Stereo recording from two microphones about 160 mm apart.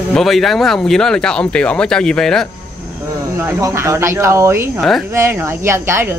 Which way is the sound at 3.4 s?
15° right (ahead or behind).